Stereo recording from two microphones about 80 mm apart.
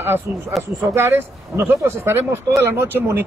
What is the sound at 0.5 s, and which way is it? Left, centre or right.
Speech, centre.